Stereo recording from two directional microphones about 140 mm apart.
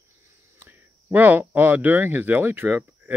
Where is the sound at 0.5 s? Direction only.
15° right (ahead or behind).